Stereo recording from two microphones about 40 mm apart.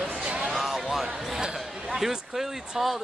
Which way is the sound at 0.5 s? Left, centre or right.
Centre.